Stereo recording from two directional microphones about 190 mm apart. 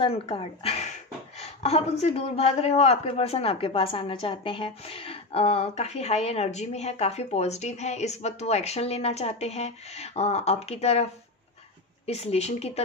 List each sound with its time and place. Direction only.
0.0 s a man's voice: 30° left (ahead or behind)
12.1 s a man's voice: 35° left (ahead or behind)